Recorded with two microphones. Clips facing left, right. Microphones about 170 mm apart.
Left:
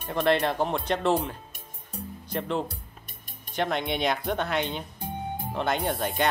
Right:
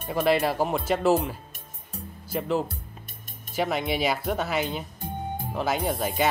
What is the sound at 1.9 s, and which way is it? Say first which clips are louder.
Music: even; centre (ahead or behind).